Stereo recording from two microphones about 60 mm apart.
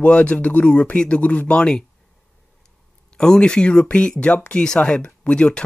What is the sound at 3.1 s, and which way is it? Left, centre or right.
Speech, centre.